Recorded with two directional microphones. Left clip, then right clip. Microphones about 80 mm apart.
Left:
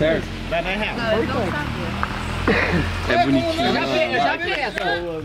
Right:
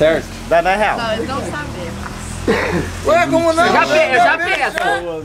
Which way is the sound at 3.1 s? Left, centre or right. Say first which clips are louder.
Right 6 dB; right.